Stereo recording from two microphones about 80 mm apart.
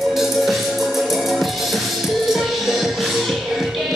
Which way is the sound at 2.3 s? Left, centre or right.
Centre.